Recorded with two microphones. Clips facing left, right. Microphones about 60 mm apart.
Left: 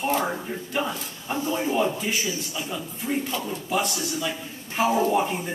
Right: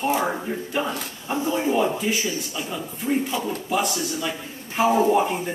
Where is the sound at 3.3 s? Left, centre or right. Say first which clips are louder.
Right 3 dB; centre.